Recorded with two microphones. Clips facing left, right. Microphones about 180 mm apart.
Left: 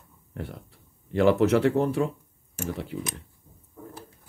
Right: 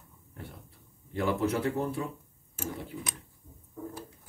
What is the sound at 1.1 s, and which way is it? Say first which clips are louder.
Speech: left 9 dB; 85° left.